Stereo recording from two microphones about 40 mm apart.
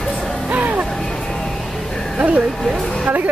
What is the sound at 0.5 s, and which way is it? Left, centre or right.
Music, right.